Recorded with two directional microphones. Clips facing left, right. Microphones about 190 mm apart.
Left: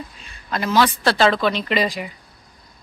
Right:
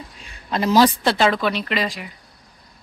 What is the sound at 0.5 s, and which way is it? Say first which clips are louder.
Speech: right 3 dB; 35° right (ahead or behind).